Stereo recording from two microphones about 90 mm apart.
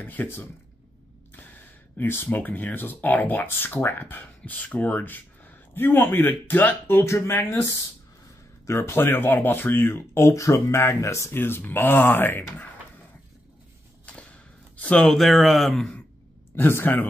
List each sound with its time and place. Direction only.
0.0 s speech: 20° left (ahead or behind)
2.0 s speech: 25° left (ahead or behind)
8.6 s speech: 30° left (ahead or behind)
14.0 s a sound: 10° left (ahead or behind)
16.5 s speech: 25° left (ahead or behind)